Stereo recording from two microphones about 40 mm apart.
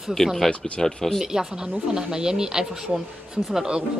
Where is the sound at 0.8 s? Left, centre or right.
Centre.